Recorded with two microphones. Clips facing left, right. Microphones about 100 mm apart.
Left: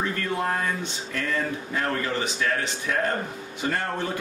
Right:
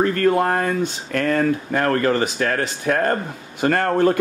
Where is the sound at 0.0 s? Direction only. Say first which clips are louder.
Right 10 dB; 60° right (ahead or behind).